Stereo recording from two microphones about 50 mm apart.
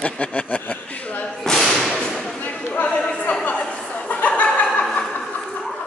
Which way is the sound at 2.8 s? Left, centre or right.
Centre.